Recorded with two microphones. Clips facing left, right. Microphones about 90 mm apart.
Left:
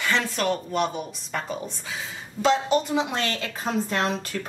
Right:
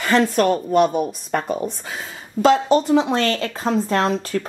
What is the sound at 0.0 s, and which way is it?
A woman's voice, 45° right (ahead or behind).